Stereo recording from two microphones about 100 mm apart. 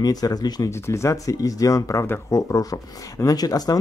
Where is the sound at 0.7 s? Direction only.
30° left (ahead or behind).